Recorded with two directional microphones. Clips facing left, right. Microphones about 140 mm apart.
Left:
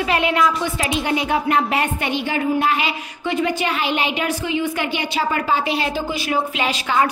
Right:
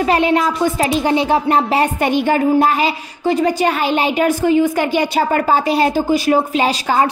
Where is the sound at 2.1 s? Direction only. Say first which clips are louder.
Right 7 dB; 45° right (ahead or behind).